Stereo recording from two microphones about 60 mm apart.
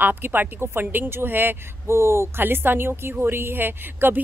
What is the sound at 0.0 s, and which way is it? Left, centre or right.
A woman's voice, right.